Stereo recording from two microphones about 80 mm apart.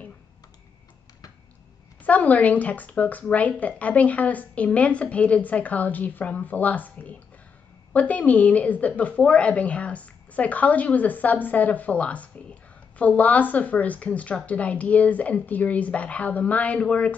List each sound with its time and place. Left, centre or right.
2.0 s a woman's voice: centre